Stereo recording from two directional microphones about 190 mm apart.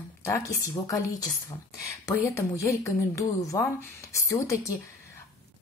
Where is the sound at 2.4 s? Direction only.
15° left (ahead or behind).